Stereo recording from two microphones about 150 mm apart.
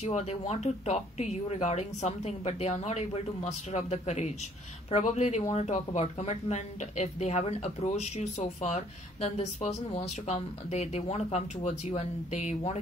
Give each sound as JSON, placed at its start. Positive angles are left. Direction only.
{"t": 0.0, "sound": "speech", "side_deg": 45}